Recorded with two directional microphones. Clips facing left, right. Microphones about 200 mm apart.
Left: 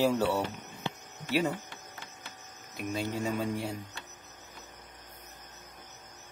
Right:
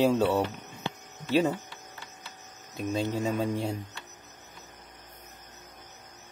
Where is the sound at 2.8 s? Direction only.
25° right (ahead or behind).